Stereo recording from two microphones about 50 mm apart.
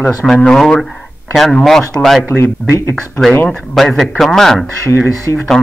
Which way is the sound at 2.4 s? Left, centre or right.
Left.